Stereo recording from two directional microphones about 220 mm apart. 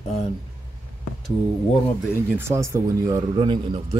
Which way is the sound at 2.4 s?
10° right (ahead or behind).